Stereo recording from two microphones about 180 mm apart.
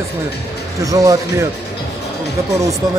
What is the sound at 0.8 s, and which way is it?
Speech, 20° right (ahead or behind).